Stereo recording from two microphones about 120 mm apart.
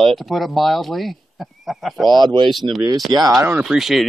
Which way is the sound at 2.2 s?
40° right (ahead or behind).